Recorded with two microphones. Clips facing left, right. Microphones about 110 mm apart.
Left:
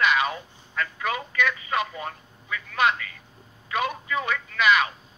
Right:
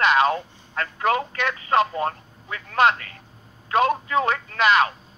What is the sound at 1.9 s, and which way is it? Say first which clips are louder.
Speech: right 9 dB; 50° right (ahead or behind).